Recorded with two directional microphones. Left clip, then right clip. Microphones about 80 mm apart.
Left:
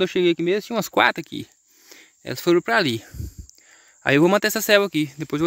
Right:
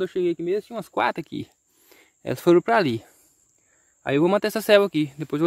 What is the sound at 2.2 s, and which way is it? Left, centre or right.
Speech, right.